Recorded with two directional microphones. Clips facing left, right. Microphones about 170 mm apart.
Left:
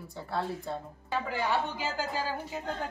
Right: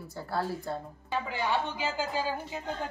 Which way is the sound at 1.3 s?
40° left (ahead or behind).